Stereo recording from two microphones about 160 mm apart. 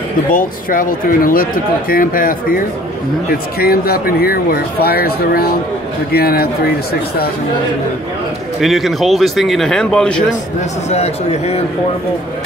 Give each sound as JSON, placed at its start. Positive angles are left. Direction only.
{"t": 0.3, "sound": "speech", "side_deg": 60}
{"t": 3.3, "sound": "speech", "side_deg": 75}
{"t": 8.5, "sound": "speech", "side_deg": 0}
{"t": 10.9, "sound": "a man's voice", "side_deg": 40}